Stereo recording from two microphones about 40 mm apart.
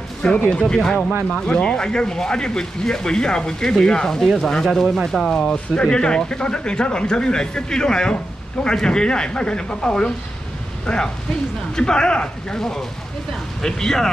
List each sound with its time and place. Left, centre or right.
0.2 s speech: left
1.5 s speech: left; by 5.4 s centre
5.5 s speech: left